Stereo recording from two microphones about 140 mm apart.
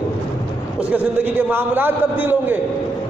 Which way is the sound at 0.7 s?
10° right (ahead or behind).